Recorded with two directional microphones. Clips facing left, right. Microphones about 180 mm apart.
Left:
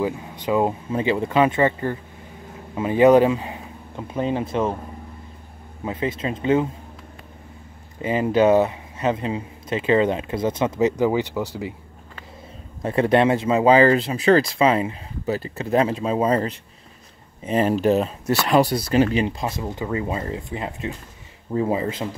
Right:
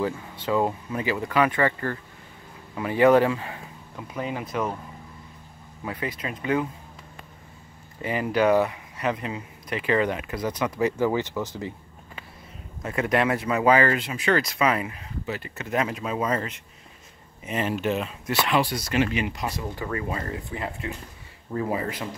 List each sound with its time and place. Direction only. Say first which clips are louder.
0.0 s speech: left 3 dB; 15° left (ahead or behind)
5.9 s speech: left 6 dB; 25° left (ahead or behind)
8.0 s speech: left 5 dB; 25° left (ahead or behind)
12.8 s speech: left 6 dB; 30° left (ahead or behind)